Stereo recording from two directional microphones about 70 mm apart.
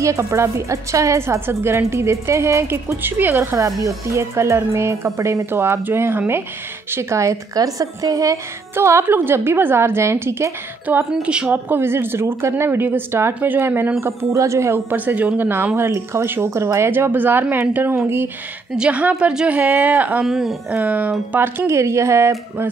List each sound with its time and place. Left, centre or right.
0.0 s a woman's voice: right
3.0 s a woman's voice: right
3.8 s a woman's voice: right
8.7 s a woman's voice: right
9.0 s speech: right
10.9 s a woman's voice: right
11.5 s a woman's voice: right
14.3 s a woman's voice: right
14.9 s speech: right
18.8 s a woman's voice: centre
20.2 s speech: centre
20.8 s a woman's voice: right